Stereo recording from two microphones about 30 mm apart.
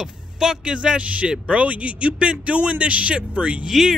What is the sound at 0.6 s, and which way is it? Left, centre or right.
Speech, right.